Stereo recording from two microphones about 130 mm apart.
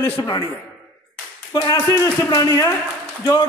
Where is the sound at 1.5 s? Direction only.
30° left (ahead or behind).